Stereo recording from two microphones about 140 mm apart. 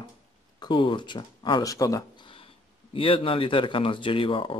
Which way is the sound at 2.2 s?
40° left (ahead or behind).